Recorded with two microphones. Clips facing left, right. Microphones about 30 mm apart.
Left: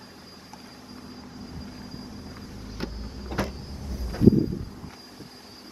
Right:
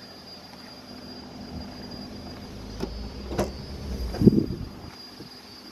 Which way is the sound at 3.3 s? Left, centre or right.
Centre.